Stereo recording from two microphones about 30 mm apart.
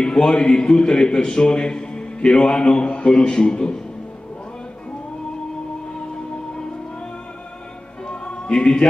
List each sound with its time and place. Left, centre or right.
0.0 s a sound: left
0.4 s a man's voice: left
8.1 s music: left